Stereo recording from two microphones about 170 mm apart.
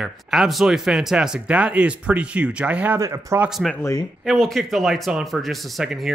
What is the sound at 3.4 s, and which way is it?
Speech, centre (ahead or behind).